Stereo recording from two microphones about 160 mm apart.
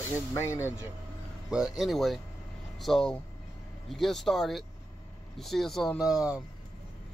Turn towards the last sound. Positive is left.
turn(degrees=-5)  # may be behind; listen again after turning